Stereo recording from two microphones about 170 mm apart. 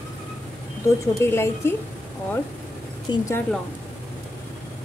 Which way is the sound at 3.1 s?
15° left (ahead or behind).